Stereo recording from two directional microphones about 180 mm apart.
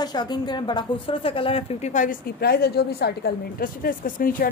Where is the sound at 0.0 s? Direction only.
25° left (ahead or behind).